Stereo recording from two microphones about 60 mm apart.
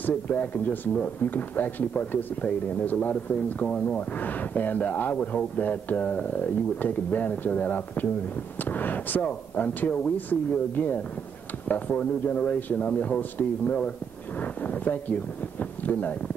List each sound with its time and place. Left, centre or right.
0.0 s speech: left
3.6 s speech: centre
4.2 s speech: left